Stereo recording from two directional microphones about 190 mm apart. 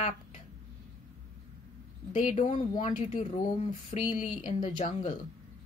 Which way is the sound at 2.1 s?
40° left (ahead or behind).